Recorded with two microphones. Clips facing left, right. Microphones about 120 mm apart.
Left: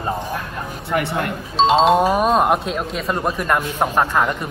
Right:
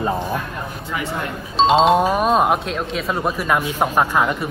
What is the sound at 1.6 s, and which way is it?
Speech, centre (ahead or behind).